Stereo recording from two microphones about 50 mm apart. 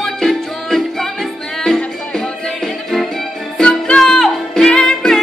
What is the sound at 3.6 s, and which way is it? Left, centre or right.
Music, centre.